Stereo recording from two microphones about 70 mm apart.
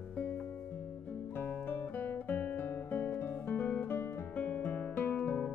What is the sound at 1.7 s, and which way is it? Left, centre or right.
Guitar, left.